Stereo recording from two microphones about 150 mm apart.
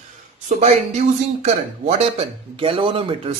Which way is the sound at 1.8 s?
40° right (ahead or behind).